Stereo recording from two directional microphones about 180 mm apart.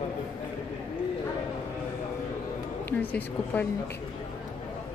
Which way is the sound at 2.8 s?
10° left (ahead or behind).